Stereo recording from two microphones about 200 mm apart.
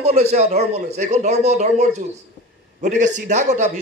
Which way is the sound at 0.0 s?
35° right (ahead or behind).